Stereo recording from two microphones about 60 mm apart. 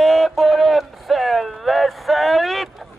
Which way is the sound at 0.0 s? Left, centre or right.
Centre.